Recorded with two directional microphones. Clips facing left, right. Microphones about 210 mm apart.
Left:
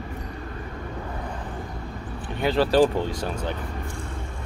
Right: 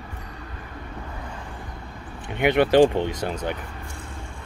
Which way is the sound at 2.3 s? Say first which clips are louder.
Right 3 dB; 20° right (ahead or behind).